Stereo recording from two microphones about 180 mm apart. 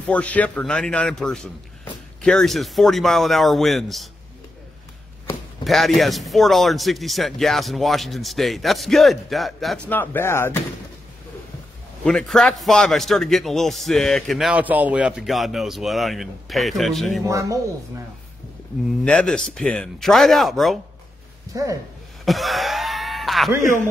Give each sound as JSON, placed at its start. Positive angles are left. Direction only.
{"t": 0.0, "sound": "a man's voice", "side_deg": 10}
{"t": 5.6, "sound": "a man's voice", "side_deg": 0}
{"t": 9.8, "sound": "speech", "side_deg": 10}
{"t": 12.0, "sound": "a man's voice", "side_deg": 5}
{"t": 17.2, "sound": "speech", "side_deg": -20}
{"t": 19.0, "sound": "a man's voice", "side_deg": 5}
{"t": 21.5, "sound": "speech", "side_deg": -20}
{"t": 22.2, "sound": "speech", "side_deg": 0}